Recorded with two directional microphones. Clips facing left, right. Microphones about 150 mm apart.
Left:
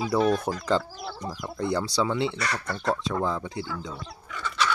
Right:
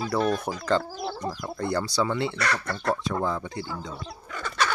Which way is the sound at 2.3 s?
65° right (ahead or behind).